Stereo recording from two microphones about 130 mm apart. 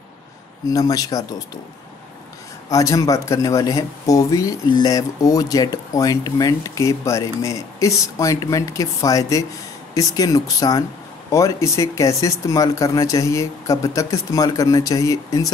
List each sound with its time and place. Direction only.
0.7 s speech: 30° left (ahead or behind)
2.7 s speech: 25° left (ahead or behind)